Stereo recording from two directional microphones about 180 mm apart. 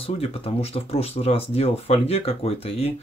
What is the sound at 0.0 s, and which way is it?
Speech, 35° left (ahead or behind).